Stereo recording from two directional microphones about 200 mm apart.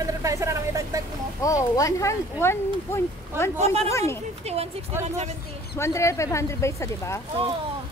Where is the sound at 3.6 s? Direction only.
30° right (ahead or behind).